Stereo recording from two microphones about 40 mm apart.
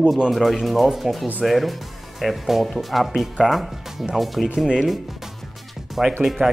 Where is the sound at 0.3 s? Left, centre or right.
Centre.